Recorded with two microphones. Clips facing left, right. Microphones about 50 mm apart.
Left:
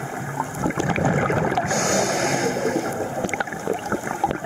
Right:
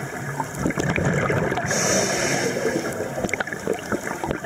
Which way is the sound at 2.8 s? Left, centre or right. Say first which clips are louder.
Left 1 dB; centre.